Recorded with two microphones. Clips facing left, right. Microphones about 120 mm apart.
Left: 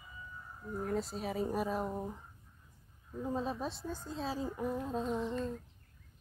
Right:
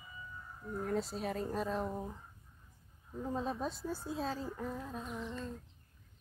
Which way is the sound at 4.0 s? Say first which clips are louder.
Right 2 dB; 10° right (ahead or behind).